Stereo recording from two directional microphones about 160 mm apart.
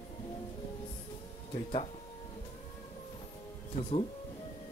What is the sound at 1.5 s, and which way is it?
Music, 35° left (ahead or behind).